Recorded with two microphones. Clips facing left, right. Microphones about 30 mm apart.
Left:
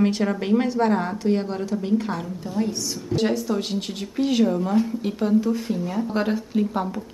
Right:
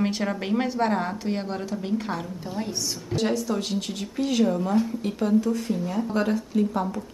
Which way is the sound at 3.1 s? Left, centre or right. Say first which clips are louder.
Left 2 dB; centre.